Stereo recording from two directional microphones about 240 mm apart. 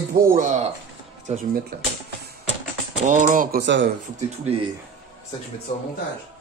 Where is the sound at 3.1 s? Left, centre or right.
Right.